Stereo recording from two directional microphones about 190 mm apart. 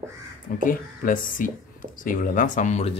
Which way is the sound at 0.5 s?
45° left (ahead or behind).